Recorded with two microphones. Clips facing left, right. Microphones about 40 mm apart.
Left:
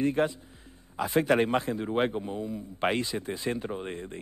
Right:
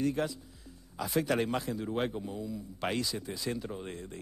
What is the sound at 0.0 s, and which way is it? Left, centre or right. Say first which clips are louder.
Speech: left 5 dB; left.